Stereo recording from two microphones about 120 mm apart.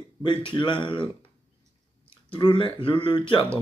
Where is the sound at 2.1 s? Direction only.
45° left (ahead or behind).